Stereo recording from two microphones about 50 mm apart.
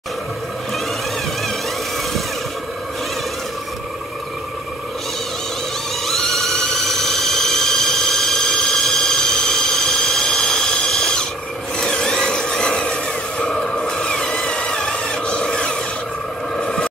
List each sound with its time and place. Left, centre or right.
6.0 s a sound: centre
10.9 s mechanisms: centre
11.7 s rub: centre
16.5 s vehicle: centre